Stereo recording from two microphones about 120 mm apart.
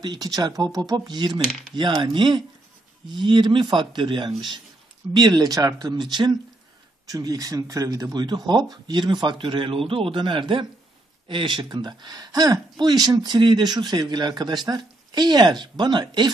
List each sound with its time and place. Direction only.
0.0 s speech: 35° right (ahead or behind)
1.4 s speech: centre (ahead or behind)
2.0 s speech: 40° right (ahead or behind)